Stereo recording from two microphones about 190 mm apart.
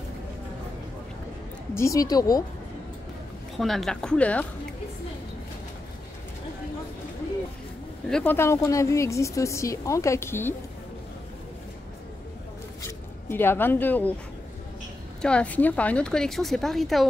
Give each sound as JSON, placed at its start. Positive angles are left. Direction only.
{"t": 1.7, "sound": "a woman's voice", "side_deg": 15}
{"t": 3.5, "sound": "a woman's voice", "side_deg": 0}
{"t": 8.1, "sound": "speech", "side_deg": 10}
{"t": 12.8, "sound": "speech", "side_deg": 10}
{"t": 15.2, "sound": "a woman's voice", "side_deg": 5}